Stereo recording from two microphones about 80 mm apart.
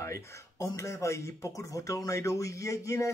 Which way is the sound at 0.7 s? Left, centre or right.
Left.